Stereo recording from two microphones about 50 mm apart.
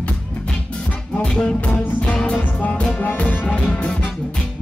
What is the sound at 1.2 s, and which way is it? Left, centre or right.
Music, centre.